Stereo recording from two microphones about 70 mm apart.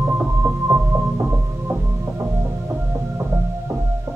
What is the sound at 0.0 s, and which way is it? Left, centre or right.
Music, right.